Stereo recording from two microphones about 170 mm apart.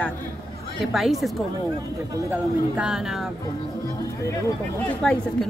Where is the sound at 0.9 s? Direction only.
Centre (ahead or behind).